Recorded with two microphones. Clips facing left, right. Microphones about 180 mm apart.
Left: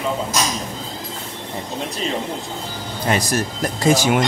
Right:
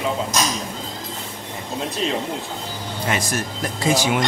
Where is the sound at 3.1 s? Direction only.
35° left (ahead or behind).